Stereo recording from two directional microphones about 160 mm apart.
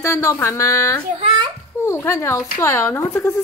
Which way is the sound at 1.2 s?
30° right (ahead or behind).